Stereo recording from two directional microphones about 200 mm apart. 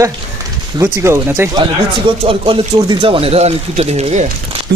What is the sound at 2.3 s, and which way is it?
Speech, 25° right (ahead or behind).